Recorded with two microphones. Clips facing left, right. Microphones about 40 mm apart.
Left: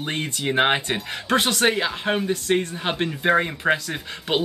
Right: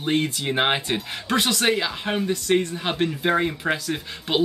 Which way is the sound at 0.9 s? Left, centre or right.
Left.